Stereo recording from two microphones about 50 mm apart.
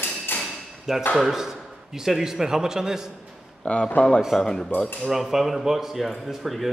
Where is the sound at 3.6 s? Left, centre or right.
Left.